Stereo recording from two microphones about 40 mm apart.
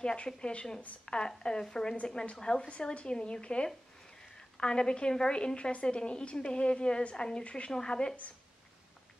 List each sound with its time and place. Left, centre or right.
0.0 s a woman's voice: left